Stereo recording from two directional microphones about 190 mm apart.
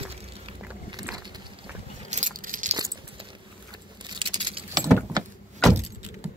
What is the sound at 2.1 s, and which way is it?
Biting, 45° right (ahead or behind).